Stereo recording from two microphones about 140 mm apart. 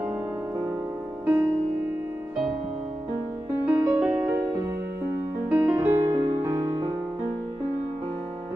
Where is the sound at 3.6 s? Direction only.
10° right (ahead or behind).